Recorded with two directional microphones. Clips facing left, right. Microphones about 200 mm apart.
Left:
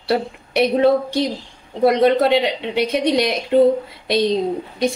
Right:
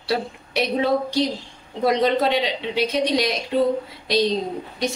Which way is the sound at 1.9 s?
60° left (ahead or behind).